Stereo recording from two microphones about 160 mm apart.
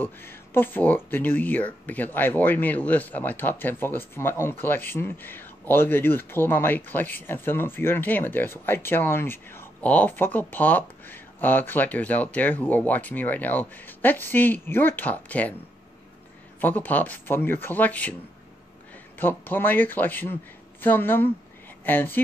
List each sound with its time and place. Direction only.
0.0 s speech: 15° left (ahead or behind)
16.6 s speech: 10° left (ahead or behind)
19.1 s speech: 10° left (ahead or behind)